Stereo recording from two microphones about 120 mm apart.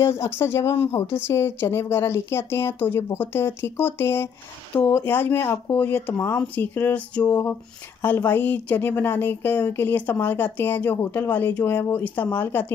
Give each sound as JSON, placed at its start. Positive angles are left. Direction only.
{"t": 0.0, "sound": "a woman's voice", "side_deg": 20}